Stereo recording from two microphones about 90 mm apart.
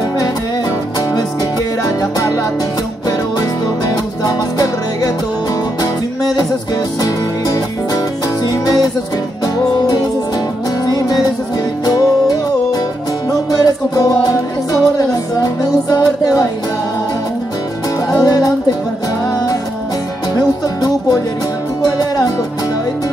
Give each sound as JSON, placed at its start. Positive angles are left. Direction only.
{"t": 2.0, "sound": "music", "side_deg": 40}
{"t": 11.8, "sound": "music", "side_deg": 45}
{"t": 18.1, "sound": "music", "side_deg": 45}
{"t": 20.3, "sound": "music", "side_deg": 45}